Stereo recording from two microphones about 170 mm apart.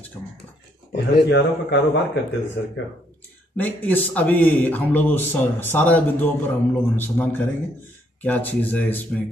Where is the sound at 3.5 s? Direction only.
10° left (ahead or behind).